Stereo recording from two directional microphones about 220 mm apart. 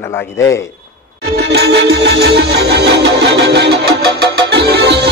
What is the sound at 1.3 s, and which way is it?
Music, 50° right (ahead or behind).